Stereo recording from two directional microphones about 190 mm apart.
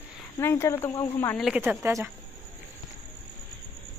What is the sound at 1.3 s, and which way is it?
Speech, 5° right (ahead or behind).